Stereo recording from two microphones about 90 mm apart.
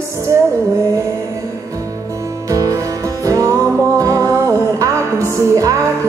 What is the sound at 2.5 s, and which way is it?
Music, 40° right (ahead or behind).